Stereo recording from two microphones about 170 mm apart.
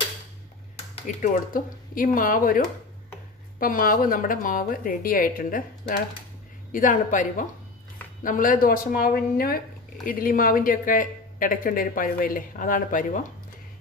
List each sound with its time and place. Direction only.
1.0 s a woman's voice: 45° left (ahead or behind)